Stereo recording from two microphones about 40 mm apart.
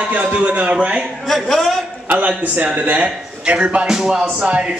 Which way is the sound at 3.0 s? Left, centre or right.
Right.